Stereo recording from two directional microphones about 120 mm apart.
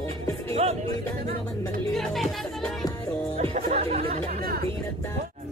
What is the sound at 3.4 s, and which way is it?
Music, 60° right (ahead or behind).